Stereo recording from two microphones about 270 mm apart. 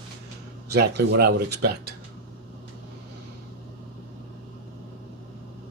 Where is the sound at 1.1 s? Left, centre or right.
Right.